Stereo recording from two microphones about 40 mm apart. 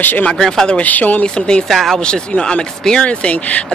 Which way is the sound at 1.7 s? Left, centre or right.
Centre.